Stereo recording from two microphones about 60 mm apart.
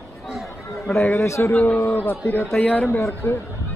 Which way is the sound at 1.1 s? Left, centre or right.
Left.